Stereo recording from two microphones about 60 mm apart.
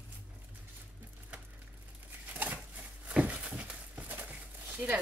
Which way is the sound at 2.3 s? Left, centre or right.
Right.